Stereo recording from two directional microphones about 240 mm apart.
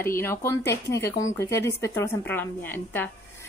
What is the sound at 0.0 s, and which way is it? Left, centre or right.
A woman's voice, centre.